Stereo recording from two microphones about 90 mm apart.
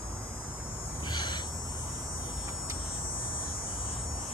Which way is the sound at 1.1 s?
55° left (ahead or behind).